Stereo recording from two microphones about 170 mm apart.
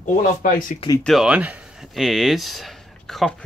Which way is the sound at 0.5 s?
30° left (ahead or behind).